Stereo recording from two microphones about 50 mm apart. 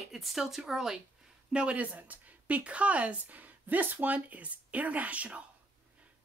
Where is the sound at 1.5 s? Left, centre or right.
Right.